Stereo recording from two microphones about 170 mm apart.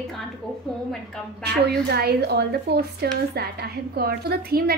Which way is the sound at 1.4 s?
70° right (ahead or behind).